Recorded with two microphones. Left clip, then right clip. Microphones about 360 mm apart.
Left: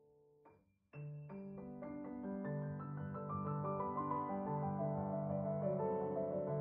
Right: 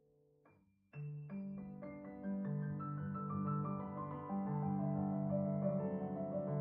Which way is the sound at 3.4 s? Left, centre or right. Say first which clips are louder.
Left 3 dB; centre.